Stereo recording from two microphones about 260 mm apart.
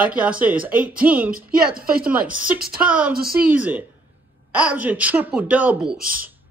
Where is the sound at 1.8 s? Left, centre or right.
Right.